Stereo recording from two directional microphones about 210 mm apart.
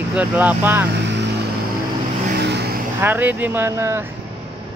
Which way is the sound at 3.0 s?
10° right (ahead or behind).